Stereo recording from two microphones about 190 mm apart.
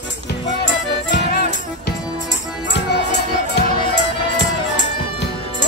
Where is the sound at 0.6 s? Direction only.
70° left (ahead or behind).